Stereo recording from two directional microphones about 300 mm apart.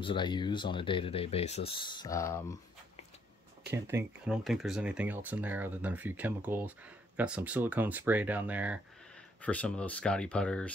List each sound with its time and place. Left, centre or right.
0.0 s speech: centre
3.7 s speech: centre